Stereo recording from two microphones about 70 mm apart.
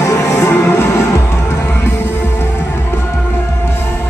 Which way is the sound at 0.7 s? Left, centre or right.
Left.